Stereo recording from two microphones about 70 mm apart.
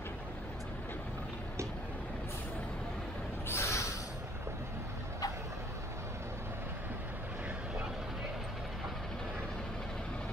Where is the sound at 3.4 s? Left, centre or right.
Left.